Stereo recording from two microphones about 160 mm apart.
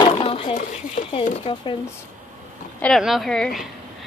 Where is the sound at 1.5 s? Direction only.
30° left (ahead or behind).